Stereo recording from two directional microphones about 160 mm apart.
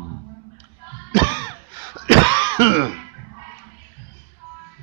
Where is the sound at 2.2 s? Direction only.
30° right (ahead or behind).